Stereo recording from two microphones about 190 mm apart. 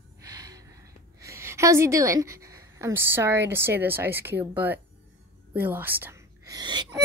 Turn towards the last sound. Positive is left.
turn(degrees=-20)  # may be behind; listen again after turning